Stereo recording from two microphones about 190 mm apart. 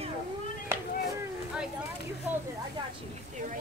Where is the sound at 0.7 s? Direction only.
10° right (ahead or behind).